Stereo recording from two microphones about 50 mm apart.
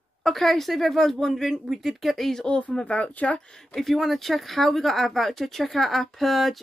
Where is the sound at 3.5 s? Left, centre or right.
Centre.